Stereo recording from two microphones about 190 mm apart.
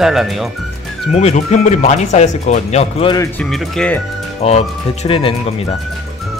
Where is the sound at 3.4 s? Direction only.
Centre (ahead or behind).